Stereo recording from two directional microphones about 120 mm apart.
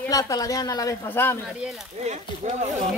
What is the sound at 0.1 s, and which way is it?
Speech, 30° left (ahead or behind).